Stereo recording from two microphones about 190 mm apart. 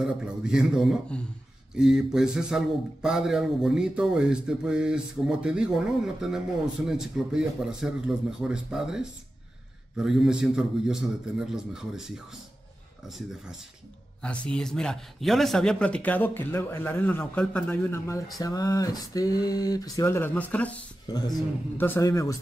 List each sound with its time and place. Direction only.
0.0 s a man's voice: 5° right (ahead or behind)
14.2 s a man's voice: 5° left (ahead or behind)
21.1 s a man's voice: 20° left (ahead or behind)